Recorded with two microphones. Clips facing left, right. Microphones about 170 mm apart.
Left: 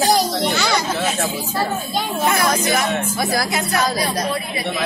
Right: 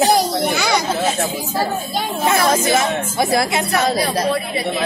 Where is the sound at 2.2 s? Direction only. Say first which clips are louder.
Right 3 dB; 25° right (ahead or behind).